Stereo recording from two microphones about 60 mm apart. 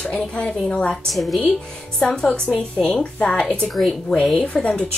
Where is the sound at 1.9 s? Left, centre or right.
Centre.